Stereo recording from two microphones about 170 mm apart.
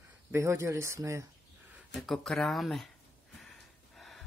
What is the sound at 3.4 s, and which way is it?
Gasp, centre (ahead or behind).